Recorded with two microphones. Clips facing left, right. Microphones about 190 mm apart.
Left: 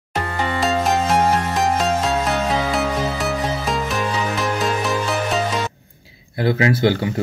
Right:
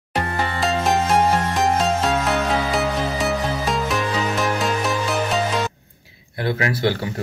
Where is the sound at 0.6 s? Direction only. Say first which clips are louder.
Left 1 dB; centre (ahead or behind).